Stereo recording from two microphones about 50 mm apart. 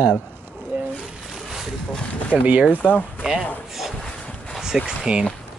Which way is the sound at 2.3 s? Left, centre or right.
Right.